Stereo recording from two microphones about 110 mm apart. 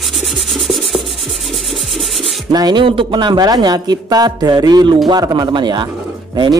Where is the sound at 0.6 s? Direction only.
Centre (ahead or behind).